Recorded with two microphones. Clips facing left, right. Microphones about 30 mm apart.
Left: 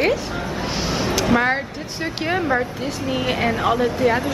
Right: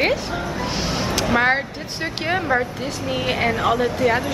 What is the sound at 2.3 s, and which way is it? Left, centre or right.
Speech, centre.